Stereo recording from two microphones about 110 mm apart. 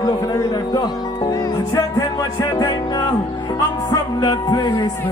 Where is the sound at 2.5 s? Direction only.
40° left (ahead or behind).